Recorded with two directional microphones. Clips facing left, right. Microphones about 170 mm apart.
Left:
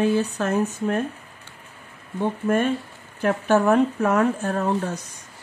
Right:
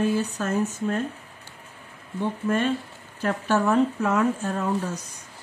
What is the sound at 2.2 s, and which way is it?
Speech, 50° left (ahead or behind).